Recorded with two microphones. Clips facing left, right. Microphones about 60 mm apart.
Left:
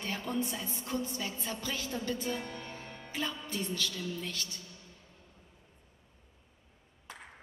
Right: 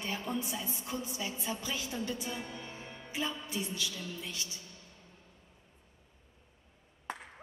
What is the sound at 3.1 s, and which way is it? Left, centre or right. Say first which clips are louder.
A woman's voice: even; centre.